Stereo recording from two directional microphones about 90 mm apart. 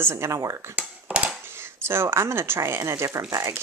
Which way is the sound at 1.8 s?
25° right (ahead or behind).